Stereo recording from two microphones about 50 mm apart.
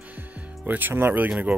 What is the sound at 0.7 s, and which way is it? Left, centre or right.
Speech, right.